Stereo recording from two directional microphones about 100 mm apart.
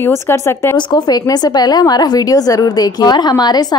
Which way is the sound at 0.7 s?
45° left (ahead or behind).